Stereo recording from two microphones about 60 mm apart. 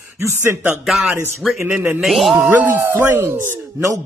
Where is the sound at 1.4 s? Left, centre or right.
Centre.